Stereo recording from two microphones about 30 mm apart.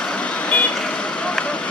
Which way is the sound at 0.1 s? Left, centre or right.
Left.